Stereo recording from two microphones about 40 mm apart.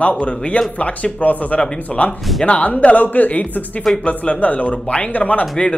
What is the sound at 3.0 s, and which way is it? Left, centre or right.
Speech, left.